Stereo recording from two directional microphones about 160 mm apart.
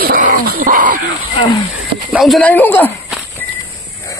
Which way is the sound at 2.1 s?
Centre (ahead or behind).